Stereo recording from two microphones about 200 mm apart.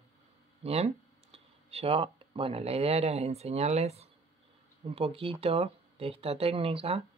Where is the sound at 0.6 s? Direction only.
30° right (ahead or behind).